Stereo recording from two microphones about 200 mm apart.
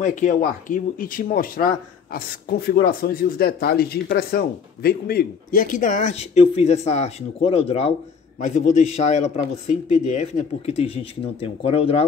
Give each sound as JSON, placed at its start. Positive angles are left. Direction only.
{"t": 0.0, "sound": "speech", "side_deg": 40}